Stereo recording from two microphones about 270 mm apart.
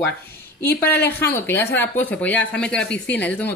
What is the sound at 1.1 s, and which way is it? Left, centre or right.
Speech, centre.